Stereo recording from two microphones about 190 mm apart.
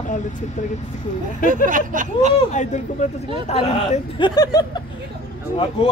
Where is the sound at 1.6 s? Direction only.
45° right (ahead or behind).